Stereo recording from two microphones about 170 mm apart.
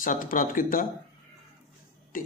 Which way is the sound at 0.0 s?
50° left (ahead or behind).